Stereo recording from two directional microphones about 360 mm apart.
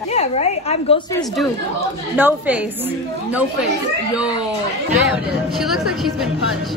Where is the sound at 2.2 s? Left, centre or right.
Centre.